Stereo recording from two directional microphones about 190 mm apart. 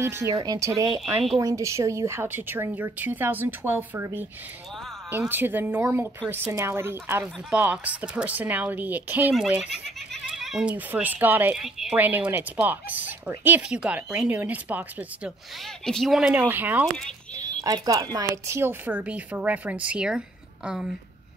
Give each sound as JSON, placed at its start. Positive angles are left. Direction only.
{"t": 0.0, "sound": "speech", "side_deg": -15}
{"t": 15.8, "sound": "speech", "side_deg": 0}